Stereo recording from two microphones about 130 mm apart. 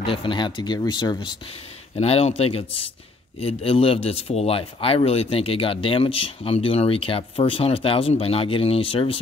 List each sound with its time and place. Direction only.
0.0 s speech: 40° left (ahead or behind)
2.0 s speech: 50° left (ahead or behind)